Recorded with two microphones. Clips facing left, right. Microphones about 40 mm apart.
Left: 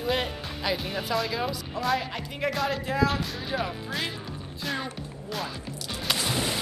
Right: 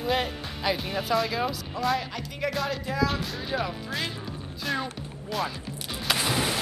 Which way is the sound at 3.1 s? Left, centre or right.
Centre.